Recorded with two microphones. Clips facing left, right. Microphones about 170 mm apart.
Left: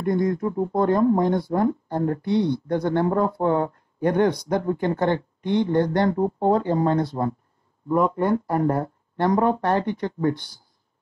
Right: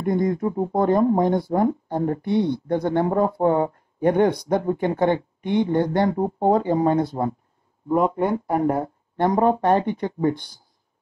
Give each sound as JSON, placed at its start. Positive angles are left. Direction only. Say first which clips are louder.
{"t": 0.0, "sound": "speech", "louder": "right 1 dB", "side_deg": -15}